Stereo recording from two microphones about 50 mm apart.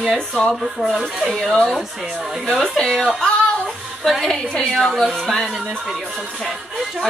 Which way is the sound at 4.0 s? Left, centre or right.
Centre.